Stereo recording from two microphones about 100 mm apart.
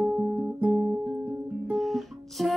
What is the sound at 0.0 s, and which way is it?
Music, 15° right (ahead or behind).